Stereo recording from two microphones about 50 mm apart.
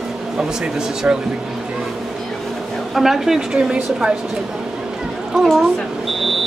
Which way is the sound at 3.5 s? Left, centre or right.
Centre.